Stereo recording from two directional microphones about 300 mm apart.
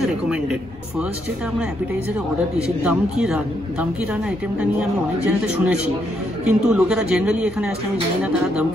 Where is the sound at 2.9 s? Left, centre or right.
Centre.